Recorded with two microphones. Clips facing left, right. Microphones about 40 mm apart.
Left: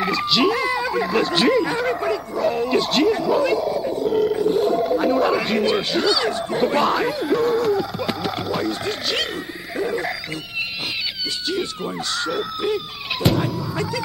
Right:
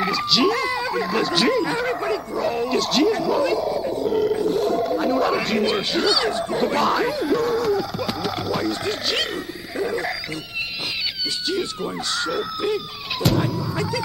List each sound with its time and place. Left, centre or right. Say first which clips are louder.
0.0 s speech: left 1 dB; centre
9.8 s a sound: left 1 dB; centre
11.4 s speech: even; centre